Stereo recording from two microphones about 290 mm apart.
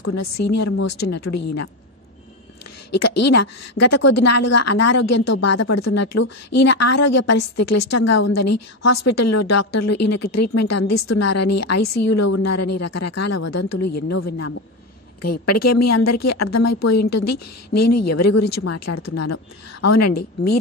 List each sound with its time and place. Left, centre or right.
0.5 s a woman's voice: left
2.9 s a woman's voice: left